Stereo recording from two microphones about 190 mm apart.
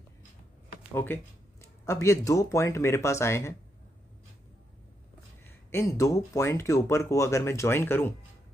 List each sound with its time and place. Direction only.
0.9 s speech: 10° left (ahead or behind)
5.7 s speech: 15° left (ahead or behind)